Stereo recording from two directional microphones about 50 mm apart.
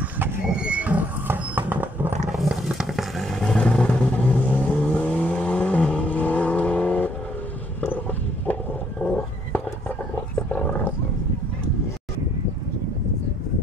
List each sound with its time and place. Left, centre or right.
0.6 s a sound: right
1.2 s a sound: right
2.3 s roaring cats: centre
3.2 s vehicle: centre
3.4 s vehicle: centre
4.5 s vehicle: left
6.0 s vehicle: left
9.0 s a sound: left
10.5 s roaring cats: left